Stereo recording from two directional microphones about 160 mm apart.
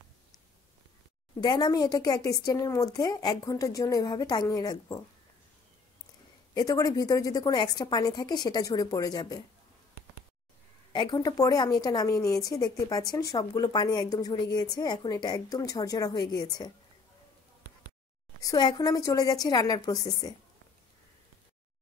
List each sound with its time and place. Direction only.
1.4 s a woman's voice: 25° left (ahead or behind)
6.5 s a woman's voice: 25° left (ahead or behind)
10.9 s a woman's voice: 25° left (ahead or behind)
18.4 s a woman's voice: 25° left (ahead or behind)